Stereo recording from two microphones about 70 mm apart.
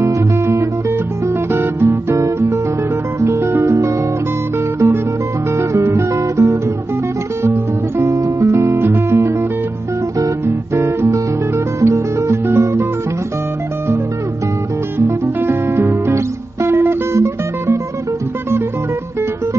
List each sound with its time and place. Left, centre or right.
0.0 s music: right
1.5 s music: right
5.6 s guitar: right
8.0 s music: right
10.4 s music: right
15.0 s music: right